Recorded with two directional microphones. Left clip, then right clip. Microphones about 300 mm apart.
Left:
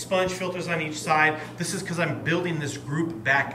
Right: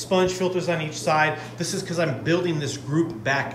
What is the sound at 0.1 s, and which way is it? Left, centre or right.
A man's voice, centre.